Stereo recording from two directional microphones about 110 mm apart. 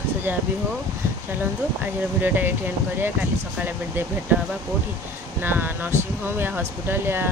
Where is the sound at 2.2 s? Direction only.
15° right (ahead or behind).